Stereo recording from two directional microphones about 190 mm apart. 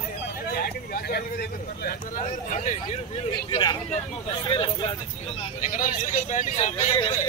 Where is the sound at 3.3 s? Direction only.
20° left (ahead or behind); by 7.0 s 40° left (ahead or behind).